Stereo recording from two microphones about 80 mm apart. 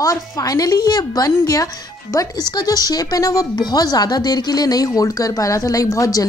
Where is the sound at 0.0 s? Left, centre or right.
Left.